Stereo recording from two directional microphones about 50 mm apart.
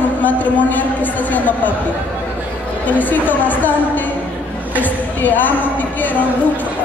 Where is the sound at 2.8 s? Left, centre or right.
Left.